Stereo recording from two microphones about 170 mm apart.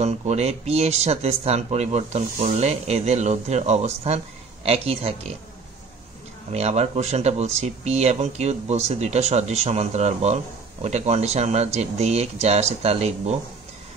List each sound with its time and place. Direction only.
0.0 s speech: 40° right (ahead or behind)
6.5 s speech: 40° right (ahead or behind)